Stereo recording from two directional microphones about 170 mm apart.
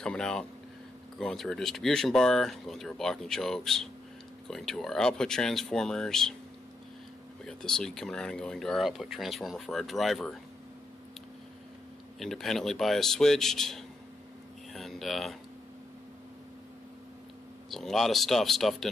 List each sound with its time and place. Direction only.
0.0 s speech: 5° left (ahead or behind)
7.4 s speech: 5° left (ahead or behind)
12.2 s speech: centre (ahead or behind)
17.6 s speech: centre (ahead or behind)